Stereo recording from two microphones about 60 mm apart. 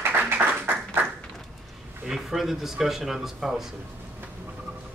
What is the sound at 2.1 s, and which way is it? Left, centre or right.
Speech, centre.